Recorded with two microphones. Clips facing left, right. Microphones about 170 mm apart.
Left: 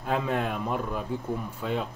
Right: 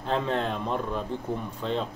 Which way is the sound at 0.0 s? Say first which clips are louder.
Even; 10° left (ahead or behind).